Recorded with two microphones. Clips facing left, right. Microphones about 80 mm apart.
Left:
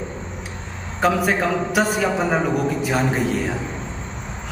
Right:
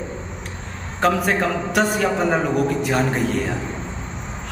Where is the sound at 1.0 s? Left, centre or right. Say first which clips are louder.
Even; centre.